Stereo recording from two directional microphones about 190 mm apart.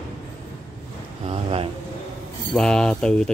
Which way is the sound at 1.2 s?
30° right (ahead or behind).